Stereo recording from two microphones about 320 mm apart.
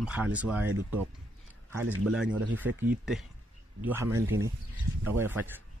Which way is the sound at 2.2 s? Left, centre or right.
Right.